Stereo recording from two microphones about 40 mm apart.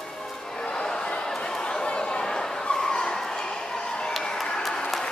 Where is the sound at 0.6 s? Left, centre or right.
Left.